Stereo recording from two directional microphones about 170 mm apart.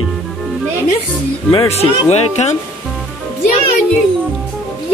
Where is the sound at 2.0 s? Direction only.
40° left (ahead or behind).